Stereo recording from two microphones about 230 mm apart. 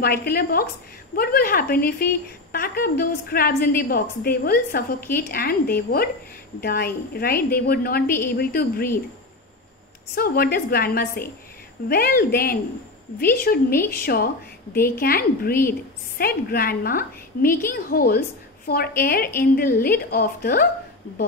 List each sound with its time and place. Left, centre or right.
0.0 s a woman's voice: left
8.1 s a woman's voice: centre
8.4 s a woman's voice: left
10.1 s a woman's voice: left